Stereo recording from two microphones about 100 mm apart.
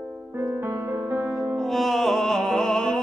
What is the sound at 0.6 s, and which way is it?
Music, 20° right (ahead or behind).